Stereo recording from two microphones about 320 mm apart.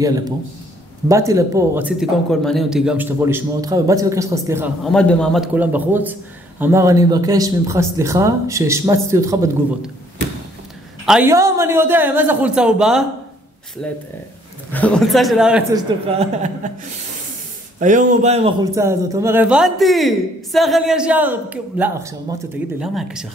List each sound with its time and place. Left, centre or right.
1.0 s a man's voice: centre
11.1 s a man's voice: centre
16.2 s speech: right
17.7 s a man's voice: right; by 23.2 s centre